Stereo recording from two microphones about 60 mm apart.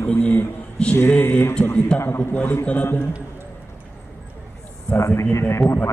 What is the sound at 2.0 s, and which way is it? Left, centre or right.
Speech, left.